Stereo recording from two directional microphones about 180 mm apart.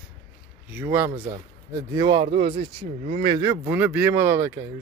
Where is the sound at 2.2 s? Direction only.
45° right (ahead or behind).